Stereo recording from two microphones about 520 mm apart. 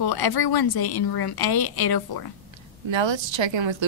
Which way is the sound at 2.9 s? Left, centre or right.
Right.